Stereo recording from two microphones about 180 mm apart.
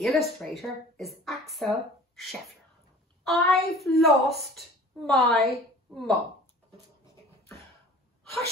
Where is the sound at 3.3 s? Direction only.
Centre (ahead or behind).